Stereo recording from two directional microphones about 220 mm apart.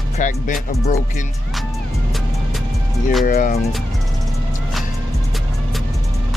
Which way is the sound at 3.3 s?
40° left (ahead or behind).